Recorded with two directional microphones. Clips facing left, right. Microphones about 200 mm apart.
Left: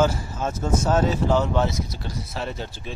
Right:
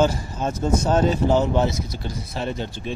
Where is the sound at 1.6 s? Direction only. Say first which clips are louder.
Right 2 dB; centre (ahead or behind).